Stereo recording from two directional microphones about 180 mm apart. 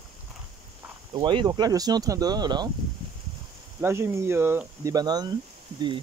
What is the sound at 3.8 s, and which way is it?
Speech, 15° right (ahead or behind).